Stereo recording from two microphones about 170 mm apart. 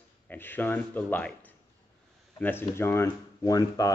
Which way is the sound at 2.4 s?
15° left (ahead or behind).